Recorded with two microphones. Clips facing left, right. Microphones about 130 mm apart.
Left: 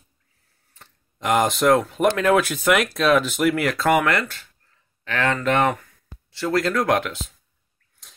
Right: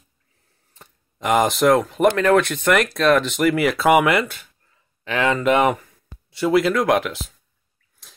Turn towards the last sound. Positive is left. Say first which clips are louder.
# right 2 dB
turn(degrees=0)  # may be behind; listen again after turning